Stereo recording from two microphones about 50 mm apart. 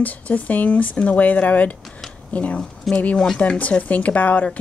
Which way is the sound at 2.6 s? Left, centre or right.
Centre.